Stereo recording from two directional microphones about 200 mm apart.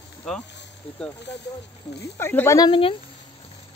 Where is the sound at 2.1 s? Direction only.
10° left (ahead or behind).